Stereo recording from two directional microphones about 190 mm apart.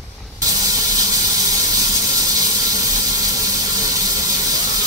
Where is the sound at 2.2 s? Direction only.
20° right (ahead or behind).